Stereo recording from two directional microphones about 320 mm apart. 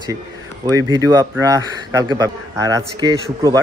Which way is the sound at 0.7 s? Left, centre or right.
Centre.